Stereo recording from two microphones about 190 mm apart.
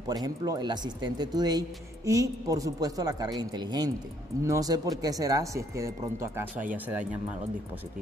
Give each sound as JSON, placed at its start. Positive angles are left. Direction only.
{"t": 0.1, "sound": "speech", "side_deg": -20}